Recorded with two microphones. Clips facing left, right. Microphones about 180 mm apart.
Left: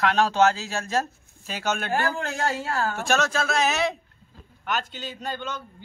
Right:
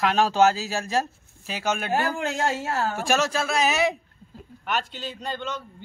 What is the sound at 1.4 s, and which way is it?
Speech, 5° right (ahead or behind).